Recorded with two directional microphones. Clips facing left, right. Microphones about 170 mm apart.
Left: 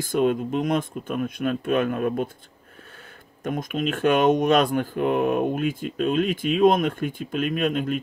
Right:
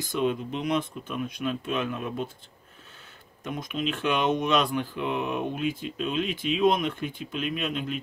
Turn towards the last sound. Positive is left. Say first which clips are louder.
# left 7 dB
turn(degrees=50)  # may be behind; listen again after turning